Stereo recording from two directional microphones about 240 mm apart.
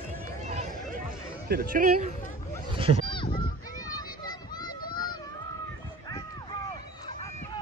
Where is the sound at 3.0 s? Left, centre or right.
Left.